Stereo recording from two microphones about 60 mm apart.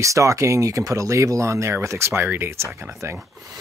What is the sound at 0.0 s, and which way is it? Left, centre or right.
Speech, right.